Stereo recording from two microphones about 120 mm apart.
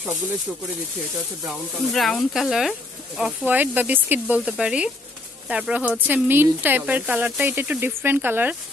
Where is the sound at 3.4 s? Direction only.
15° right (ahead or behind).